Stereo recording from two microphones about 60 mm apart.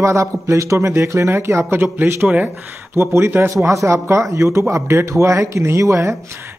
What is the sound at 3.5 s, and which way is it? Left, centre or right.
A man's voice, right.